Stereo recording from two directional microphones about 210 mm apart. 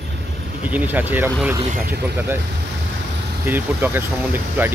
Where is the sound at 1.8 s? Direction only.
50° right (ahead or behind).